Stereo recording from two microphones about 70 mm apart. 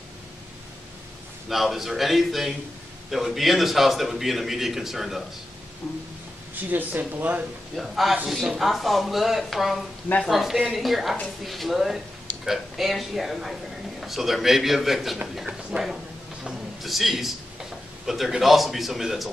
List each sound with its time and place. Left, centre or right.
1.5 s a man's voice: centre
6.5 s speech: right
7.7 s a man's voice: centre